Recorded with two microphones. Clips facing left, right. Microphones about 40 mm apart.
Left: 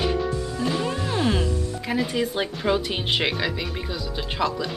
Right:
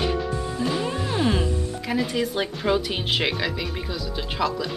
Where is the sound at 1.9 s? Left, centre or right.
Centre.